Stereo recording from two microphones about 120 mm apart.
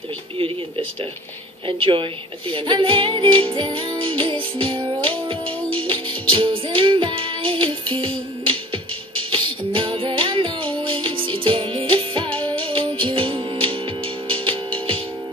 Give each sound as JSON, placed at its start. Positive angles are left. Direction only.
{"t": 1.7, "sound": "music", "side_deg": -45}